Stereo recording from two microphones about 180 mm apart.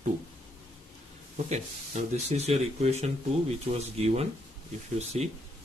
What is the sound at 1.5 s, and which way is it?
Speech, 40° right (ahead or behind).